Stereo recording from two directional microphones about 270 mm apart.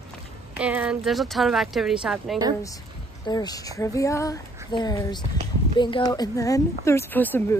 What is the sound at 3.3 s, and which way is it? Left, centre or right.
Speech, centre.